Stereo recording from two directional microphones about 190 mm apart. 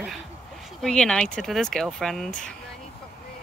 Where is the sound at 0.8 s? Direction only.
5° left (ahead or behind).